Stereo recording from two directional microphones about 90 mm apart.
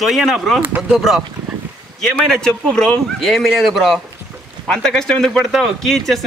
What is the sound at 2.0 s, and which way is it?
Speech, 5° left (ahead or behind).